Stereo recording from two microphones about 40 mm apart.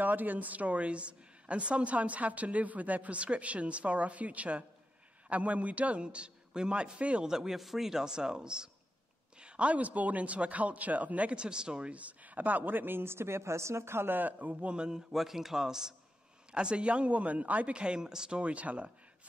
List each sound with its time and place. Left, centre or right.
0.0 s a woman's voice: right
7.2 s a woman's voice: centre; by 11.3 s right
11.3 s a man's voice: right
11.9 s a woman's voice: right
14.4 s a woman's voice: right
14.9 s speech: centre
16.5 s a woman's voice: right
17.7 s a man's voice: right
18.4 s a woman's voice: right